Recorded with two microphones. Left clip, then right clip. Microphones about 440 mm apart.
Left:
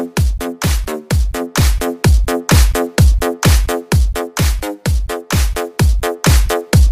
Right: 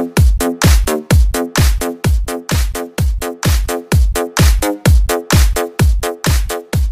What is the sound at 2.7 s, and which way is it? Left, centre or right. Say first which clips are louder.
Music: left 6 dB; left.